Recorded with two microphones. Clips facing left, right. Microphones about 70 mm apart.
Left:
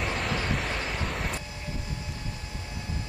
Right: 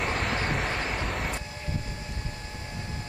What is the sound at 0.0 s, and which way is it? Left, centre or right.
Vehicle, right.